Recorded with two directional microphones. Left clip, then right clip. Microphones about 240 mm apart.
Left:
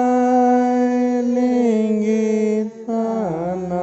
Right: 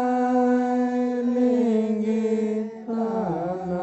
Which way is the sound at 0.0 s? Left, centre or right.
Left.